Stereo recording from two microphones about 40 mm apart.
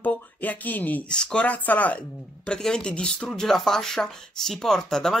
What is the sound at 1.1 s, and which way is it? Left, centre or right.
Speech, centre.